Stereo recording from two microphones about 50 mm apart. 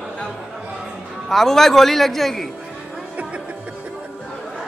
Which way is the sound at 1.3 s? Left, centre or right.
Centre.